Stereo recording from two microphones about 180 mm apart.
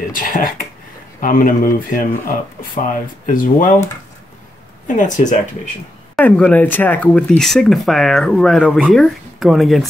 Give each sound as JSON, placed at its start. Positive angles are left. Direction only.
{"t": 0.1, "sound": "speech", "side_deg": 50}
{"t": 4.8, "sound": "speech", "side_deg": 45}
{"t": 6.1, "sound": "speech", "side_deg": 5}